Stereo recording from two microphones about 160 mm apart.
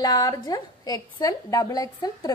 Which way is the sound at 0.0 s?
25° left (ahead or behind).